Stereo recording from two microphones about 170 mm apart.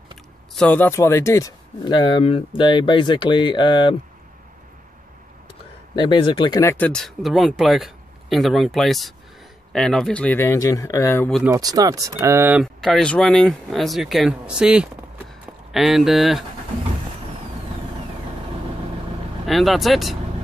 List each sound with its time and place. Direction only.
0.6 s speech: 10° left (ahead or behind); by 3.9 s 25° left (ahead or behind)
5.9 s speech: 30° left (ahead or behind)
6.6 s speech: 10° left (ahead or behind)
11.4 s speech: 20° right (ahead or behind)
12.8 s speech: 5° left (ahead or behind)
19.4 s speech: centre (ahead or behind)